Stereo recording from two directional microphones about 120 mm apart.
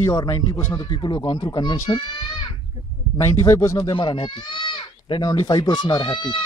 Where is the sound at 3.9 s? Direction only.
40° left (ahead or behind).